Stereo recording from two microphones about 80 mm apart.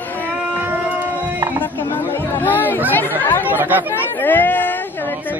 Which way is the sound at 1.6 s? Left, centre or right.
Left.